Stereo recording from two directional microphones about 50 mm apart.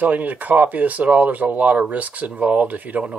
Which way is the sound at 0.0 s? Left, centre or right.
Right.